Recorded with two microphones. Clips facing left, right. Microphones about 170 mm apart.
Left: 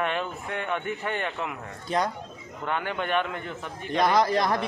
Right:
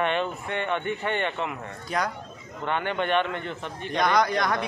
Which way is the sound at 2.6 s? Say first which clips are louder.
Right 2 dB; 5° left (ahead or behind).